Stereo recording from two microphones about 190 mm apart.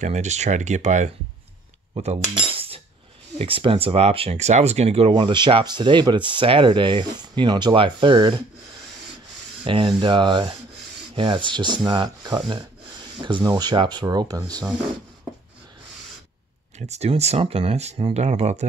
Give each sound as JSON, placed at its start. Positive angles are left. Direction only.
{"t": 0.0, "sound": "speech", "side_deg": -35}
{"t": 2.2, "sound": "cutlery", "side_deg": -30}
{"t": 3.3, "sound": "speech", "side_deg": -30}
{"t": 9.7, "sound": "speech", "side_deg": -25}
{"t": 16.7, "sound": "speech", "side_deg": -35}